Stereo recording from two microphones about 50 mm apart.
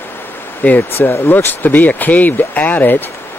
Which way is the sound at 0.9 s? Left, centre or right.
Left.